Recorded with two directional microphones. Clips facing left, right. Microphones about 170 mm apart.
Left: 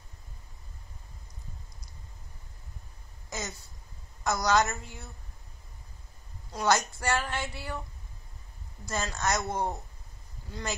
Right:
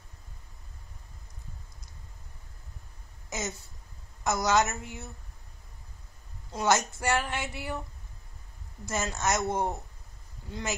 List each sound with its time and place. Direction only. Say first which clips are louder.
3.3 s a sound: right 3 dB; 20° right (ahead or behind)
4.2 s a woman's voice: even; 20° right (ahead or behind)
6.5 s speech: even; 20° right (ahead or behind)
9.0 s a woman's voice: right 2 dB; 20° right (ahead or behind)